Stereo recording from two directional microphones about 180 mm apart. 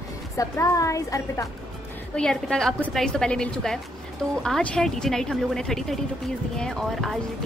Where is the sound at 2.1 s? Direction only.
5° left (ahead or behind).